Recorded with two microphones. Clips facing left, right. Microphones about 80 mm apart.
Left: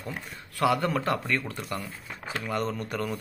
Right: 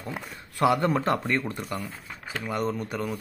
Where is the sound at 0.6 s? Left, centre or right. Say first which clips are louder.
Right 2 dB; right.